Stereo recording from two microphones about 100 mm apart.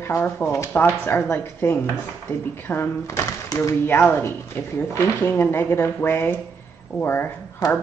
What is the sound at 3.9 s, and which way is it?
Speech, 20° left (ahead or behind).